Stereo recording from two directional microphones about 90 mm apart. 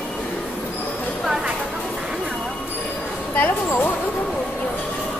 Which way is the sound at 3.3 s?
20° left (ahead or behind).